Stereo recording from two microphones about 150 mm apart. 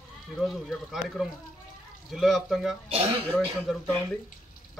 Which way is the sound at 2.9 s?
40° right (ahead or behind).